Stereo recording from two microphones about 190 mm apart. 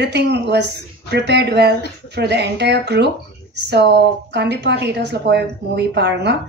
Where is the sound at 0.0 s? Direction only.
65° right (ahead or behind).